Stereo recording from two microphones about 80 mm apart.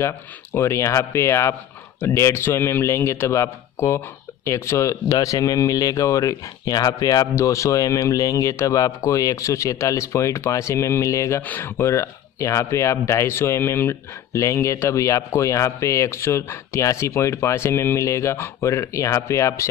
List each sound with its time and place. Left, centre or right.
0.0 s speech: left
11.4 s speech: left
11.8 s speech: left